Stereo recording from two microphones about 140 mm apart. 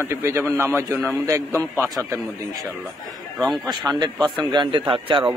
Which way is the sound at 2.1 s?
25° right (ahead or behind).